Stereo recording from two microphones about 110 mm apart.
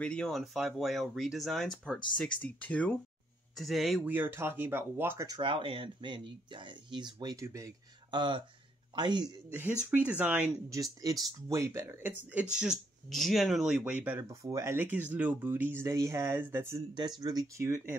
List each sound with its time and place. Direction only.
0.0 s speech: 5° left (ahead or behind)
3.5 s speech: centre (ahead or behind)
4.0 s speech: 20° right (ahead or behind)
5.4 s speech: 55° right (ahead or behind)
7.4 s speech: 30° right (ahead or behind)
8.1 s speech: 45° right (ahead or behind)
9.5 s speech: 20° right (ahead or behind)
10.7 s speech: 35° right (ahead or behind); by 14.2 s 15° right (ahead or behind)
14.2 s speech: 30° right (ahead or behind)
17.2 s speech: 35° right (ahead or behind)